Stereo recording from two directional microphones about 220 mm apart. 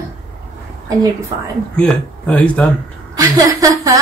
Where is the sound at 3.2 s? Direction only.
15° right (ahead or behind).